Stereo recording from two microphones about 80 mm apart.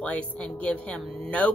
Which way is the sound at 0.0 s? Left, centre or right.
Centre.